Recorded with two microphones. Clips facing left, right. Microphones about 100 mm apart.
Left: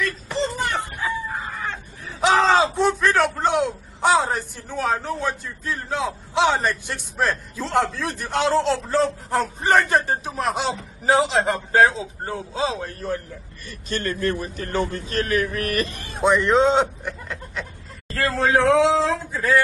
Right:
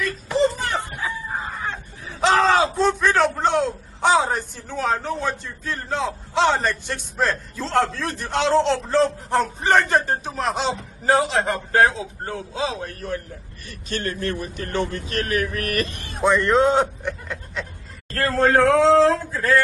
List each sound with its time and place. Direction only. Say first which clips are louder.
0.0 s chicken: right 4 dB; 10° right (ahead or behind)
2.2 s a sound: even; 20° left (ahead or behind)
2.8 s a sound: right 1 dB; 5° left (ahead or behind)
4.0 s a man's voice: right 1 dB; centre (ahead or behind)
11.2 s a man's voice: left 1 dB; 25° left (ahead or behind)
14.8 s a man's voice: left 1 dB; 35° left (ahead or behind)
16.3 s a man's voice: even; 15° left (ahead or behind)
17.0 s a sound: right 2 dB; centre (ahead or behind)
18.2 s a man's voice: right 2 dB; centre (ahead or behind)
18.8 s speech: right 3 dB; 15° left (ahead or behind)